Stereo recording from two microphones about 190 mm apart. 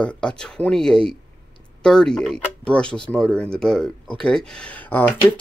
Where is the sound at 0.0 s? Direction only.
5° left (ahead or behind).